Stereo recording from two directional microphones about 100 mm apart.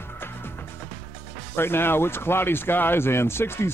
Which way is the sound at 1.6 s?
25° left (ahead or behind).